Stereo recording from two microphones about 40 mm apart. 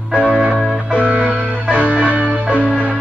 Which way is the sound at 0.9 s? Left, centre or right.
Right.